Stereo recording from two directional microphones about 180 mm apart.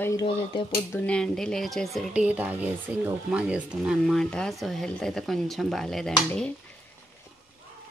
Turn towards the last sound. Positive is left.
turn(degrees=5)  # may be behind; listen again after turning